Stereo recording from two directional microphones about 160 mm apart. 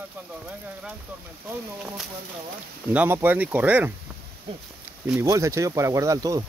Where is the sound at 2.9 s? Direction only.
10° right (ahead or behind).